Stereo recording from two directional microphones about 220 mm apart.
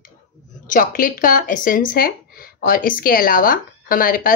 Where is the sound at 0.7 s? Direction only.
40° left (ahead or behind).